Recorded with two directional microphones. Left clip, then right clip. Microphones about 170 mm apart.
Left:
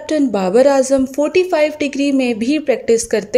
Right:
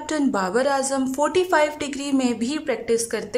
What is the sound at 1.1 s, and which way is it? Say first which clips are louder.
A woman's voice: left 5 dB; 10° left (ahead or behind).